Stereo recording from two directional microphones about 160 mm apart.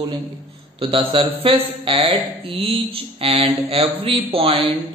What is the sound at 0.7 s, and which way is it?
Speech, 30° right (ahead or behind).